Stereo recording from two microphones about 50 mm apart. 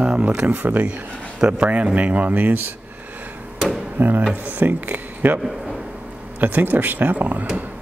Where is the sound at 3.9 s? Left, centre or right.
Right.